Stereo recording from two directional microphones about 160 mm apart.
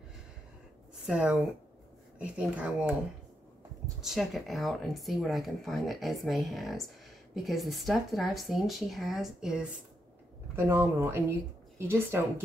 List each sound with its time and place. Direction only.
1.0 s speech: 5° right (ahead or behind)
4.0 s speech: centre (ahead or behind)
10.5 s speech: 15° right (ahead or behind)